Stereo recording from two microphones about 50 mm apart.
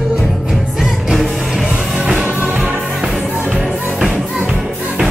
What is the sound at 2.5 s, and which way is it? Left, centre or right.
Music, right.